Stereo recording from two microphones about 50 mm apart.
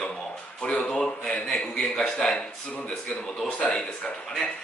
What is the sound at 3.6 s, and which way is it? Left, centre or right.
Speech, centre.